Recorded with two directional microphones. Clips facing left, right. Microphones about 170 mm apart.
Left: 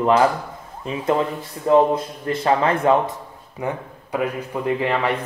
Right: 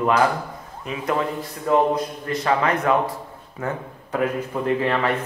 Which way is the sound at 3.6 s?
10° left (ahead or behind).